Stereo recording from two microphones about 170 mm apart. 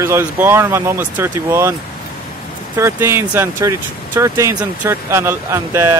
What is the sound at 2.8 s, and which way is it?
Speech, 15° right (ahead or behind).